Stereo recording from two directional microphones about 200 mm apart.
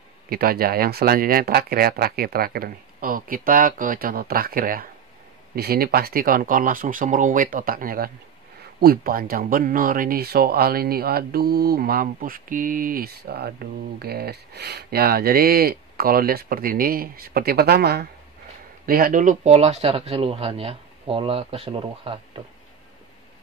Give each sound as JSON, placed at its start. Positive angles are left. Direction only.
{"t": 0.3, "sound": "speech", "side_deg": -50}